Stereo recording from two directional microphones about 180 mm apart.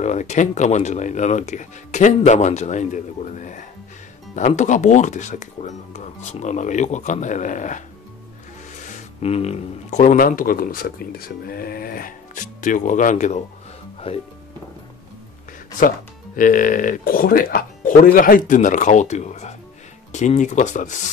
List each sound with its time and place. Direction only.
0.0 s speech: 40° left (ahead or behind)
8.8 s speech: 40° left (ahead or behind)
14.0 s speech: 30° left (ahead or behind)
16.3 s speech: 50° left (ahead or behind)